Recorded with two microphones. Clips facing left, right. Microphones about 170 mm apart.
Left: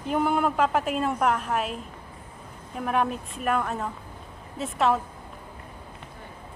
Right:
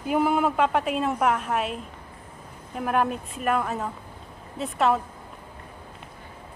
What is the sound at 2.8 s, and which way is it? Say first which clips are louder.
Speech: right 1 dB; centre (ahead or behind).